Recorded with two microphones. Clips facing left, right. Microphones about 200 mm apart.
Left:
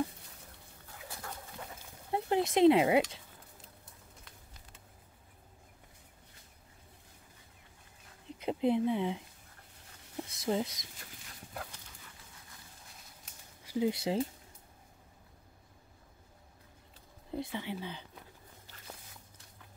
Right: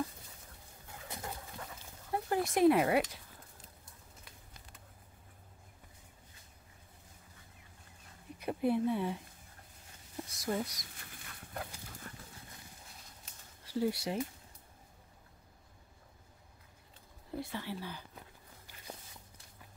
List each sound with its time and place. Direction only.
1.0 s dog: 20° right (ahead or behind)
2.0 s speech: 20° left (ahead or behind)
8.4 s speech: 20° left (ahead or behind)
10.3 s speech: 25° left (ahead or behind)
13.7 s speech: 20° left (ahead or behind)
17.3 s speech: 20° left (ahead or behind)